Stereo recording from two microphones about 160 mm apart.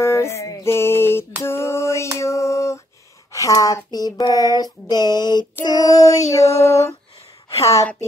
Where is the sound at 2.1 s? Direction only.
20° left (ahead or behind).